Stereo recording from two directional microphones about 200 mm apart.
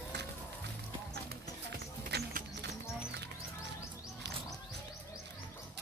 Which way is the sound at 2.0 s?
55° right (ahead or behind).